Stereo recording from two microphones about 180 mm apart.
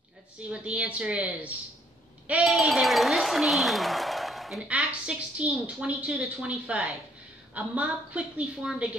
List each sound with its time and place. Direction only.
0.5 s a woman's voice: 5° right (ahead or behind)